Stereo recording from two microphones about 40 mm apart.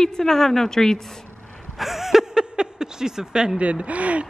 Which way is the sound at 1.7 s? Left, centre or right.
Centre.